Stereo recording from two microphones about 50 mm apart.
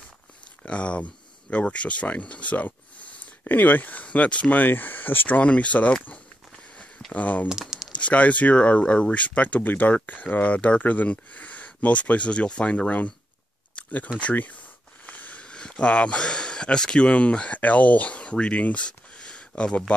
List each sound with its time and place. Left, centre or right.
0.7 s speech: left
5.4 s speech: left
7.1 s speech: left
7.4 s crumpling: centre
7.9 s speech: left
13.8 s a sound: left
14.2 s speech: left
15.0 s a sound: left
15.4 s speech: centre